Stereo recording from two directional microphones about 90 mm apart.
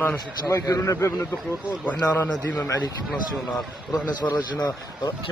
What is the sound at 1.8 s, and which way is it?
Speech, 20° left (ahead or behind).